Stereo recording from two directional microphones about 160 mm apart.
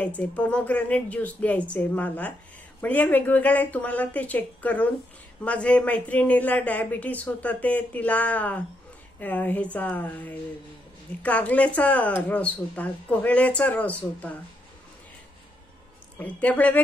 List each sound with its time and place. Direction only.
0.0 s speech: 10° left (ahead or behind)
16.2 s speech: 10° left (ahead or behind)